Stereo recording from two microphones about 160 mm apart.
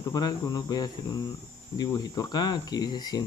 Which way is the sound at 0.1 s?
25° left (ahead or behind).